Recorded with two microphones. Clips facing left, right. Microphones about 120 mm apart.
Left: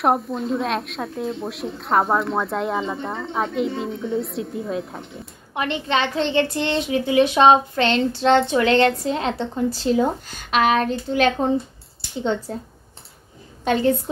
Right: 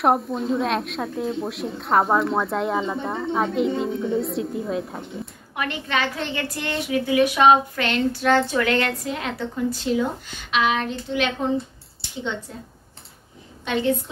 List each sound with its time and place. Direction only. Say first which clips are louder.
0.0 s a woman's voice: even; centre (ahead or behind)
5.5 s a woman's voice: left 4 dB; 25° left (ahead or behind)
13.7 s a woman's voice: left 4 dB; 45° left (ahead or behind)